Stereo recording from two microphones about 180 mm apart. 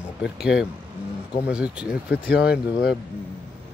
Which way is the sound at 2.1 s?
65° left (ahead or behind).